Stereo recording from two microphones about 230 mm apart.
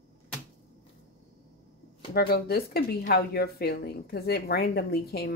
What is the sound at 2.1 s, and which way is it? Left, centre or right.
A woman's voice, left.